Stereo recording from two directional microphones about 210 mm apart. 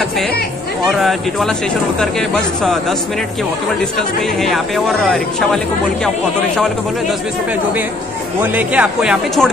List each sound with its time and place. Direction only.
0.8 s speech: centre (ahead or behind)
4.4 s speech: centre (ahead or behind)
8.4 s speech: 5° right (ahead or behind)